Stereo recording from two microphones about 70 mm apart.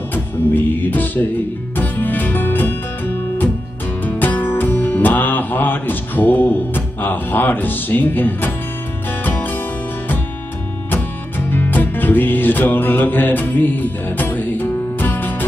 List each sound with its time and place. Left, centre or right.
0.1 s music: left
4.0 s music: left
10.9 s music: left